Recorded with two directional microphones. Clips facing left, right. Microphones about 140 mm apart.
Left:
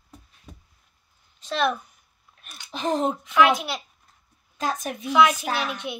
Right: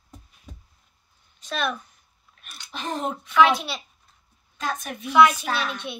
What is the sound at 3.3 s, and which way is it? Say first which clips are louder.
Speech: right 2 dB; 15° left (ahead or behind).